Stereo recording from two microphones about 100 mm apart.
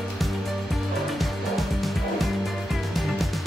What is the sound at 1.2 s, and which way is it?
Music, centre (ahead or behind).